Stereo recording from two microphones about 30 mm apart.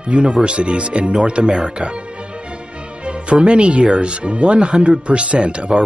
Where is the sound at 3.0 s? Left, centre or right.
Right.